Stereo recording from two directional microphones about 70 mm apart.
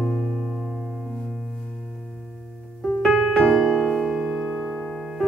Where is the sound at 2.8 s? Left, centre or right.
Centre.